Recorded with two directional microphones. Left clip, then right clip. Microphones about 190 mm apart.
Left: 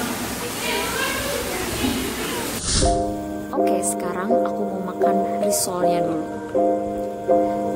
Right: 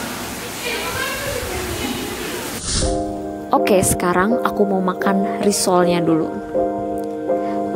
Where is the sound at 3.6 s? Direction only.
45° right (ahead or behind).